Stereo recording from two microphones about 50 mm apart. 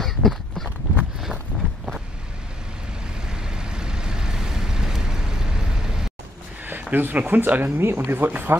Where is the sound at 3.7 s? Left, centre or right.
Centre.